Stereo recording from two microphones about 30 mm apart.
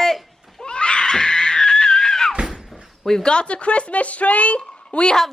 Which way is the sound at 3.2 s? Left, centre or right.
Left.